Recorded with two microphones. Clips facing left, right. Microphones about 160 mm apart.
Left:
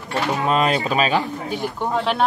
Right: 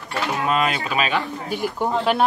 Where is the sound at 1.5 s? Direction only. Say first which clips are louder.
Right 1 dB; 5° right (ahead or behind).